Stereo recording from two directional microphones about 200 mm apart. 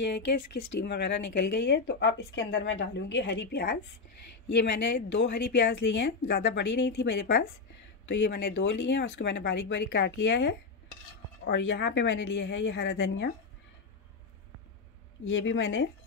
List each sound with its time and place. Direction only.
0.0 s speech: 55° left (ahead or behind)
15.2 s speech: 70° left (ahead or behind)